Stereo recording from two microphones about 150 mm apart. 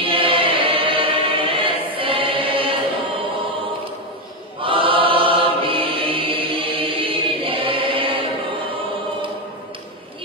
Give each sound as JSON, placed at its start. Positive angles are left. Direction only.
{"t": 0.0, "sound": "choir", "side_deg": -35}
{"t": 4.6, "sound": "choir", "side_deg": -35}